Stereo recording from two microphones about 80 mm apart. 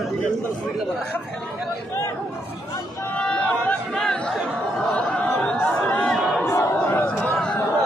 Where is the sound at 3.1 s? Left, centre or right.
Centre.